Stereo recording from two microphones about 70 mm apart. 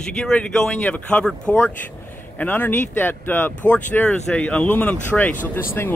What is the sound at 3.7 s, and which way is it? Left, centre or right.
Speech, centre.